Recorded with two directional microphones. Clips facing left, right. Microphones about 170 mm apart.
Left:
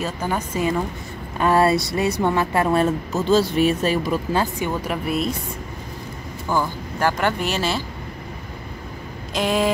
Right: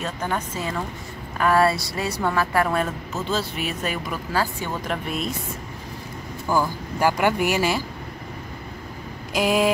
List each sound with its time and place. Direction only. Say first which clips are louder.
0.0 s speech: left 2 dB; 10° left (ahead or behind)
1.4 s a woman's voice: left 2 dB; 25° left (ahead or behind)
3.3 s speech: left 9 dB; centre (ahead or behind)
3.8 s a woman's voice: left 7 dB; 30° left (ahead or behind)
4.8 s speech: left 4 dB; 5° left (ahead or behind)
6.5 s speech: even; 10° right (ahead or behind)
9.3 s speech: even; 5° right (ahead or behind)